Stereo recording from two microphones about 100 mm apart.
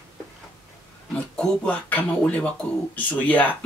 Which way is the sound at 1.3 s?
15° left (ahead or behind).